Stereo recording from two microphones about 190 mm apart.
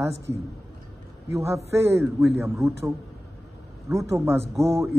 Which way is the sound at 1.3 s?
15° right (ahead or behind).